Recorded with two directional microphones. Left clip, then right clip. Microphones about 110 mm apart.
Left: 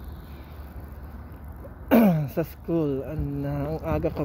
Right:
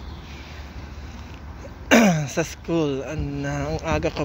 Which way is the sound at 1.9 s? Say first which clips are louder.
Right 4 dB; 50° left (ahead or behind).